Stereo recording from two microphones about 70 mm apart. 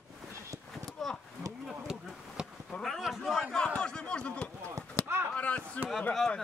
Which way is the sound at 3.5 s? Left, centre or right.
Centre.